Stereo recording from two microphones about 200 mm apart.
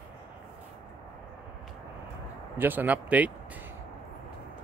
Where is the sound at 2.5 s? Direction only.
10° right (ahead or behind).